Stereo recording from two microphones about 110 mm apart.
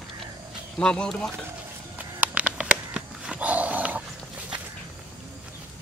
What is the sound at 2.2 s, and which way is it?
Roaring cats, 10° right (ahead or behind).